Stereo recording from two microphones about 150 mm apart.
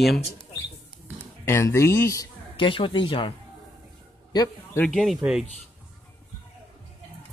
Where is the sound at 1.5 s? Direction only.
15° left (ahead or behind).